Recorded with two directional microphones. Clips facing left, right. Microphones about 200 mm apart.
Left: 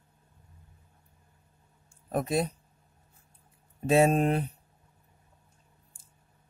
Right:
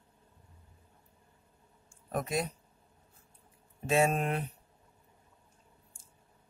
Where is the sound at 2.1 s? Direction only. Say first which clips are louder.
Left 5 dB; 30° left (ahead or behind).